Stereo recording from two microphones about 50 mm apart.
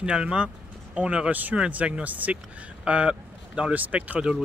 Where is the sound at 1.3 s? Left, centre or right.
Right.